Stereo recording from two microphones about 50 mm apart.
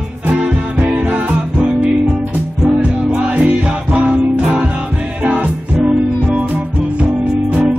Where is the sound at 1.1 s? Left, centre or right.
Right.